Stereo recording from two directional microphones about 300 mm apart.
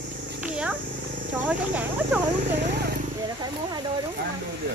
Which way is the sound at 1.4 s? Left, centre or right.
Centre.